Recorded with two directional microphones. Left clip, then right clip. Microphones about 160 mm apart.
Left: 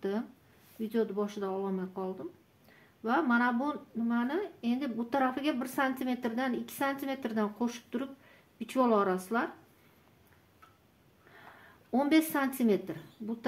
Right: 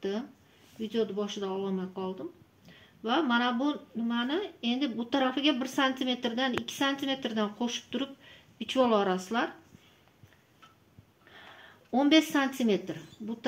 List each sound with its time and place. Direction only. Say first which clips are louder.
0.7 s a woman's voice: right 1 dB; 10° right (ahead or behind); by 9.5 s 25° right (ahead or behind)
11.9 s a woman's voice: right 3 dB; 25° right (ahead or behind)